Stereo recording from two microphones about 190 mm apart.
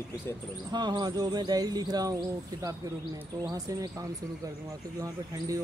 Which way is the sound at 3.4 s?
20° right (ahead or behind).